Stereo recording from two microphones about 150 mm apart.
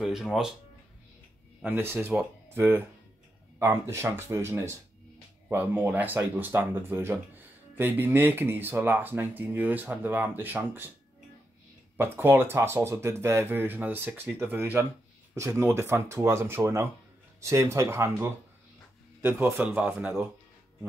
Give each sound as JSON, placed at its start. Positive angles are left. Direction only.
{"t": 0.0, "sound": "speech", "side_deg": 0}
{"t": 1.6, "sound": "speech", "side_deg": -15}
{"t": 12.0, "sound": "speech", "side_deg": -15}